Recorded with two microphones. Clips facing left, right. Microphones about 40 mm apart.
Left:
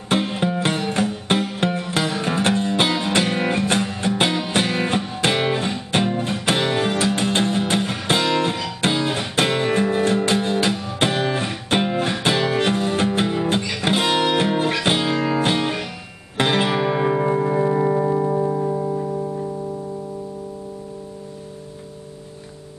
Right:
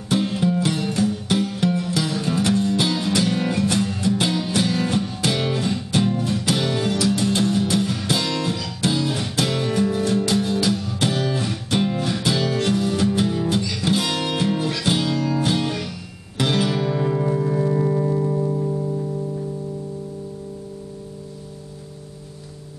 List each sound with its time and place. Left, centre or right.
0.1 s music: left